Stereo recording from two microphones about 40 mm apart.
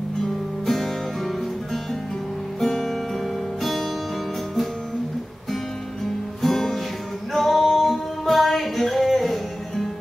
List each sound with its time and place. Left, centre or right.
0.2 s music: centre
6.4 s music: centre